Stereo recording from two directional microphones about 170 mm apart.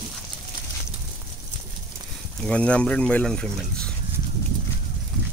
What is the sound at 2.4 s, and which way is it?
Speech, 5° left (ahead or behind).